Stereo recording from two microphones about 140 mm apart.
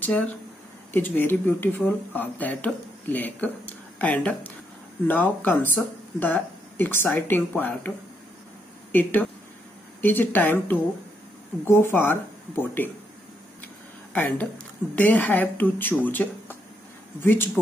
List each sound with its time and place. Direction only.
0.9 s speech: 15° left (ahead or behind)
8.9 s speech: 15° left (ahead or behind)
14.1 s speech: 10° left (ahead or behind)